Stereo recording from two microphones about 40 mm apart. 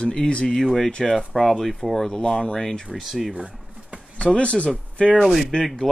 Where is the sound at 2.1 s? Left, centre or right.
Centre.